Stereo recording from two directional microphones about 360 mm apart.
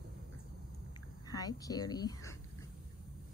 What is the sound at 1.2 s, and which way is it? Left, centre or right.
A woman's voice, centre.